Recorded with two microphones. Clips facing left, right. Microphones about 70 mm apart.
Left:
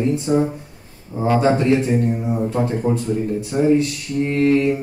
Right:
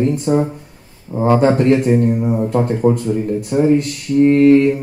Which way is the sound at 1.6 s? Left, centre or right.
Right.